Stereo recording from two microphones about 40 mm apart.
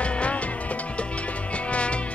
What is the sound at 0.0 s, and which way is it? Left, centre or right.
Music, left.